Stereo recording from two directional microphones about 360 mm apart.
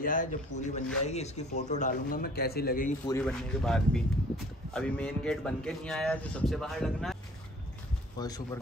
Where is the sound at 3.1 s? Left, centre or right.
Centre.